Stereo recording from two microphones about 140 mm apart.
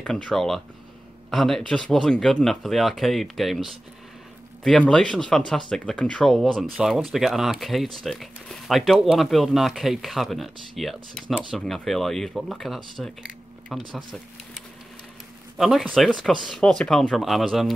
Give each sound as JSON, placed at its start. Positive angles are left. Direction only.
{"t": 0.0, "sound": "speech", "side_deg": 5}
{"t": 15.5, "sound": "speech", "side_deg": 0}